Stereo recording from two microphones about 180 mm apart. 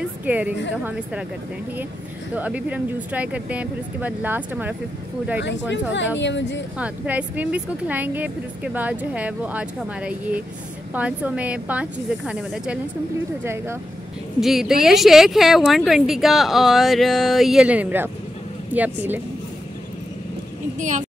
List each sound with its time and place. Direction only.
0.2 s a woman's voice: 10° right (ahead or behind)
2.3 s speech: 10° right (ahead or behind)
5.4 s speech: 85° left
6.8 s speech: 10° right (ahead or behind)
14.4 s speech: centre (ahead or behind)